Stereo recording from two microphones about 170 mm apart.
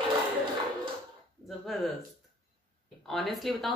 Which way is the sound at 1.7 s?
Centre (ahead or behind).